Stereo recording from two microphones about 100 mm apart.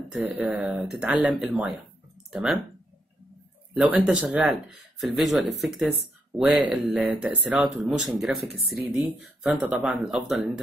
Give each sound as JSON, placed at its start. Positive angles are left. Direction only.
{"t": 0.2, "sound": "speech", "side_deg": -15}
{"t": 0.6, "sound": "speech", "side_deg": -5}
{"t": 3.7, "sound": "speech", "side_deg": -15}
{"t": 6.4, "sound": "speech", "side_deg": -15}
{"t": 7.8, "sound": "speech", "side_deg": 0}
{"t": 9.5, "sound": "speech", "side_deg": -15}
{"t": 9.8, "sound": "speech", "side_deg": -5}